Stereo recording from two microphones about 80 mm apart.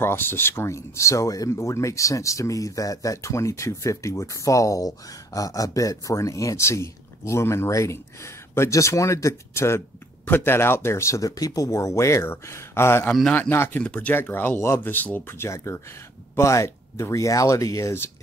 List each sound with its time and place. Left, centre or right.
0.0 s speech: left
13.8 s speech: centre
14.1 s speech: left